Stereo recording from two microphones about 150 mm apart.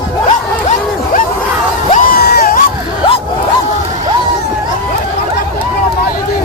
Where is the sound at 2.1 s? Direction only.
85° left.